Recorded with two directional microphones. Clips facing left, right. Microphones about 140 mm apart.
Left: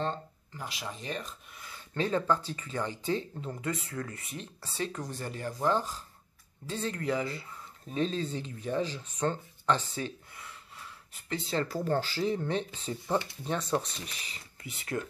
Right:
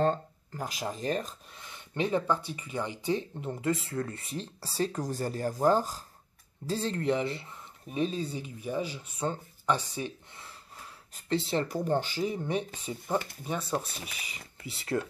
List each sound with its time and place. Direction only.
0.0 s speech: 45° right (ahead or behind)
1.6 s speech: 20° right (ahead or behind)
8.0 s speech: 10° right (ahead or behind)
11.4 s speech: 20° right (ahead or behind)